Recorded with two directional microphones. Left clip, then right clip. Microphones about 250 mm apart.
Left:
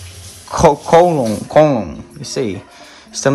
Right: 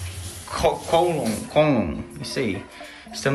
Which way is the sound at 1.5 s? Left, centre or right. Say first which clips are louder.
Left 8 dB; centre.